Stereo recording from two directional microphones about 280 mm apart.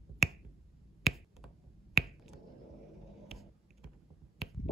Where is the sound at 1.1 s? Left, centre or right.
Centre.